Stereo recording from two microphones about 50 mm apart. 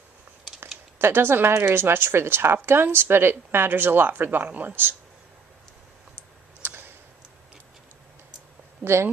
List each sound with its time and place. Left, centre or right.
0.9 s a man's voice: right
6.6 s a sound: right
8.8 s speech: right